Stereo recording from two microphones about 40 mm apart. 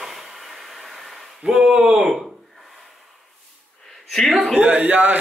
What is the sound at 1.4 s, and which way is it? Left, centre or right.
Speech, right.